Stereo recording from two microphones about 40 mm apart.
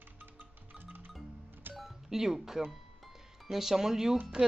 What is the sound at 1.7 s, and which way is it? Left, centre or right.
Cash register, centre.